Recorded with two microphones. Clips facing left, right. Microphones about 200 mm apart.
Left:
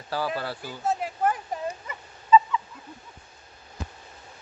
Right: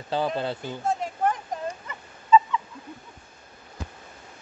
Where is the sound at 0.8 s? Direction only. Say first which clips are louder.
Even; 5° left (ahead or behind).